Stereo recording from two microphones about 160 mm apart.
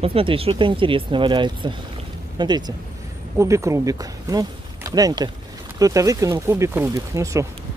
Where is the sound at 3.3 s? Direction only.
20° right (ahead or behind).